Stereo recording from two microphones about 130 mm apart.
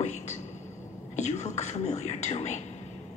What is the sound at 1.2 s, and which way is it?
Speech, 60° left (ahead or behind).